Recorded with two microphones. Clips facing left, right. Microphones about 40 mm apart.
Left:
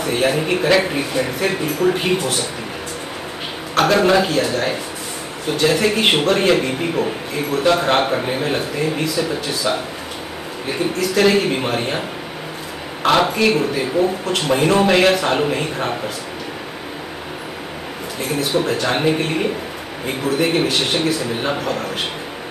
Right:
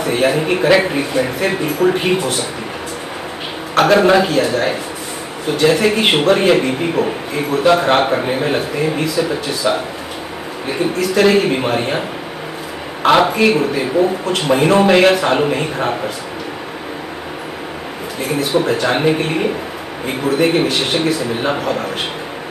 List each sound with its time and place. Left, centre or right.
0.0 s speech: centre
3.7 s a man's voice: centre
13.0 s a man's voice: centre
18.2 s a man's voice: centre